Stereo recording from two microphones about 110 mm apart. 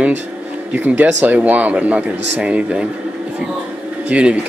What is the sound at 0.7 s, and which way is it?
A man's voice, 15° right (ahead or behind).